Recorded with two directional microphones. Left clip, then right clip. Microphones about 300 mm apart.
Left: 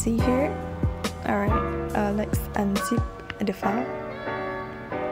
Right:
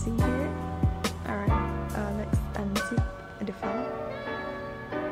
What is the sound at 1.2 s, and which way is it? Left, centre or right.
Music, centre.